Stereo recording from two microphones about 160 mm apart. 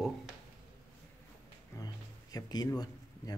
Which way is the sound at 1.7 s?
25° left (ahead or behind).